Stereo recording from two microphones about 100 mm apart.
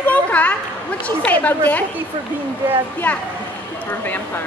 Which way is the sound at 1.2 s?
15° left (ahead or behind).